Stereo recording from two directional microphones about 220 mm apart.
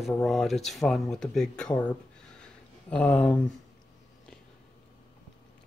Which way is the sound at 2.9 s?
5° left (ahead or behind).